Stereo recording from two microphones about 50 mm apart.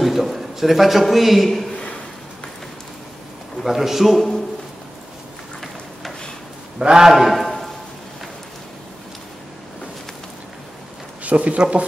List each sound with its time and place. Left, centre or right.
0.0 s a man's voice: centre
3.6 s a man's voice: centre
6.8 s a man's voice: centre
11.2 s speech: right